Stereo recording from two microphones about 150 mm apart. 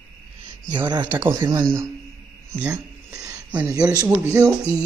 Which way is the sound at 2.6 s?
20° right (ahead or behind).